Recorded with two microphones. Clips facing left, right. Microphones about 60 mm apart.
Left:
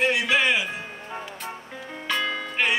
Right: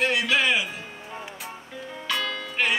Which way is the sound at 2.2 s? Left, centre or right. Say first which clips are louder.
Left 2 dB; centre.